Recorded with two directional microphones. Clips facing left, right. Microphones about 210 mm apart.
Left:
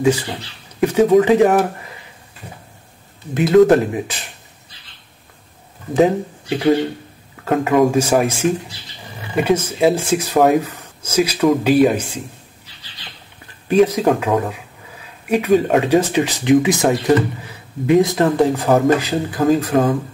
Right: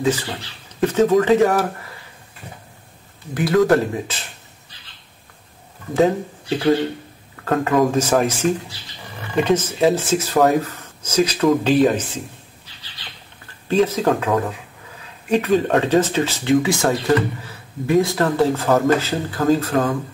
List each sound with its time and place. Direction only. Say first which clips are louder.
0.0 s speech: left 4 dB; 10° left (ahead or behind)
3.3 s speech: left 5 dB; 20° left (ahead or behind)
5.9 s speech: left 2 dB; 15° left (ahead or behind)
13.7 s speech: left 3 dB; 15° left (ahead or behind)